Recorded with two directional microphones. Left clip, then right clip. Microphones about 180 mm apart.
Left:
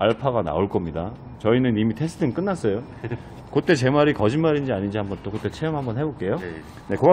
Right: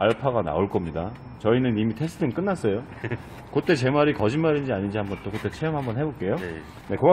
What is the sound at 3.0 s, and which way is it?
Speech, 30° right (ahead or behind).